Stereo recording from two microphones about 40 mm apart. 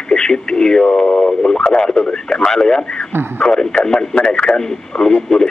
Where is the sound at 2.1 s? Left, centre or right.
Centre.